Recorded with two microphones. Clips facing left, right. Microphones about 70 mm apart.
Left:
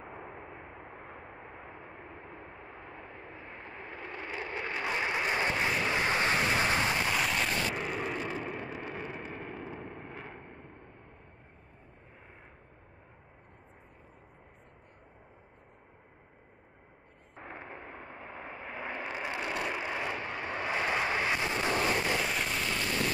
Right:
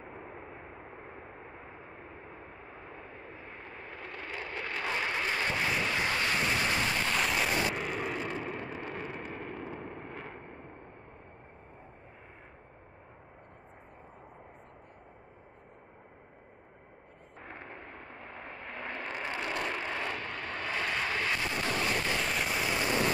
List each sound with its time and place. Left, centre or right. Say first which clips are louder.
0.0 s vehicle: even; centre; by 6.4 s left
7.1 s vehicle: even; centre
17.4 s vehicle: left 2 dB; centre
22.2 s a sound: right 1 dB; centre